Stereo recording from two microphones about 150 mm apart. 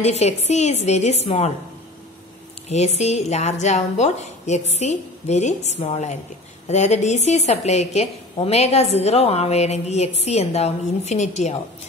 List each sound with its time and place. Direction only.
0.0 s a woman's voice: 45° left (ahead or behind)
2.7 s a woman's voice: 45° left (ahead or behind)